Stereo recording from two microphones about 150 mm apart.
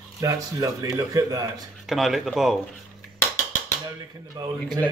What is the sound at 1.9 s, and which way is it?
Speech, centre (ahead or behind).